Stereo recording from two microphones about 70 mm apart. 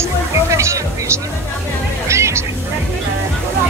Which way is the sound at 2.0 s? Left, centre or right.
Right.